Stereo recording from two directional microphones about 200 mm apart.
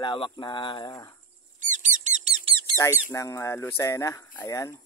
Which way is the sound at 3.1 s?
15° left (ahead or behind).